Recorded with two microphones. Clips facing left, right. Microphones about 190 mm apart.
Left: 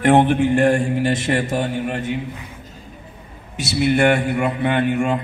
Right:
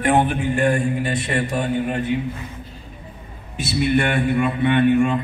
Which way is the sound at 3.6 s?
75° left (ahead or behind).